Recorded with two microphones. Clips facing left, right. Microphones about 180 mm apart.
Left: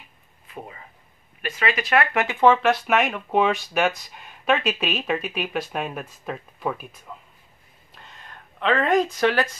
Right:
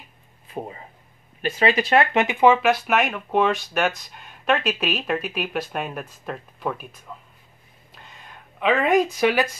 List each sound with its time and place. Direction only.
0.5 s speech: 30° right (ahead or behind); by 9.5 s 10° right (ahead or behind)